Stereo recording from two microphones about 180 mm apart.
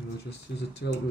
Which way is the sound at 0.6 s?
75° left (ahead or behind).